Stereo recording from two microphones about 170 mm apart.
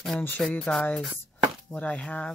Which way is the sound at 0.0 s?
5° left (ahead or behind).